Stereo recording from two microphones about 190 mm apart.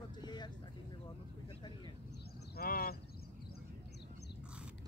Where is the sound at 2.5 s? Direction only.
50° left (ahead or behind).